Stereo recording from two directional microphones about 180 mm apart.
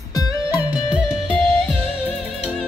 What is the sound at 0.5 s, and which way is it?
Music, 5° right (ahead or behind).